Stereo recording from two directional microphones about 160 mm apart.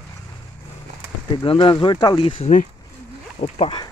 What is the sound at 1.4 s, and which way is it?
Speech, 35° left (ahead or behind).